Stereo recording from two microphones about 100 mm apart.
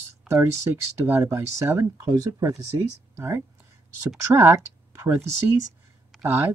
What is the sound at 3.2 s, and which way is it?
Speech, 30° right (ahead or behind).